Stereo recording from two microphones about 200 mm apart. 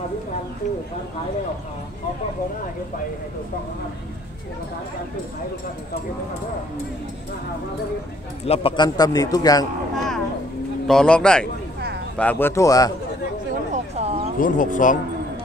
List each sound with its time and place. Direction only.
8.5 s a man's voice: 25° left (ahead or behind)
9.9 s music: centre (ahead or behind)
10.9 s speech: 5° left (ahead or behind)
13.9 s a sound: 30° right (ahead or behind)
14.4 s speech: 40° left (ahead or behind)